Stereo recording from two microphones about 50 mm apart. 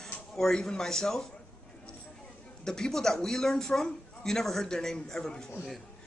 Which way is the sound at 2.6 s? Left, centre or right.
Centre.